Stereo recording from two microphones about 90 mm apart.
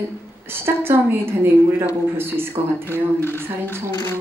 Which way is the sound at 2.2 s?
25° right (ahead or behind).